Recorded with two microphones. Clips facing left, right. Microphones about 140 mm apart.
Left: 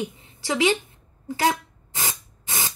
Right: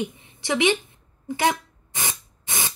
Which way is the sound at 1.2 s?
20° right (ahead or behind).